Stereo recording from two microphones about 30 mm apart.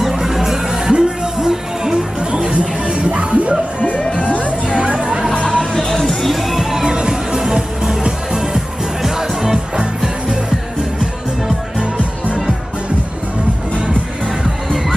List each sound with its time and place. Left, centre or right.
0.1 s music: centre
0.9 s music: right
2.6 s music: right
4.1 s music: left
4.7 s chatter: right
5.8 s music: centre
6.2 s music: centre
6.7 s music: right
9.8 s music: right